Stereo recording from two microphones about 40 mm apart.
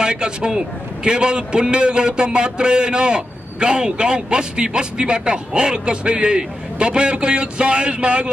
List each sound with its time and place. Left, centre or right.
0.0 s a man's voice: right